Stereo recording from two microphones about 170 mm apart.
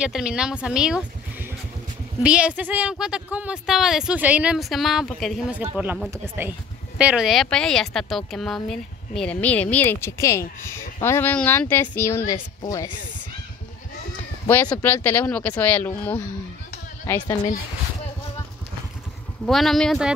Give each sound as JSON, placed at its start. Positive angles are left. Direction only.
{"t": 0.0, "sound": "speech", "side_deg": -5}
{"t": 2.2, "sound": "speech", "side_deg": -5}
{"t": 14.5, "sound": "speech", "side_deg": 10}
{"t": 19.4, "sound": "speech", "side_deg": 0}